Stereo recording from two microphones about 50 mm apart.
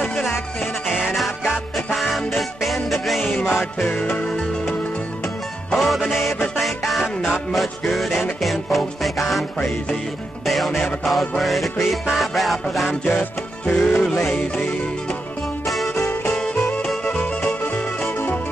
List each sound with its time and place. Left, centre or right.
0.8 s music: centre
5.8 s music: centre
13.0 s music: left
15.6 s music: centre
16.0 s music: left